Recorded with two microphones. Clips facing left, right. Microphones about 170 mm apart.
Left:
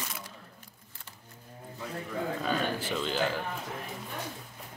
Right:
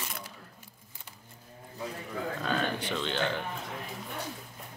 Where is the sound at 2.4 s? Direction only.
5° left (ahead or behind).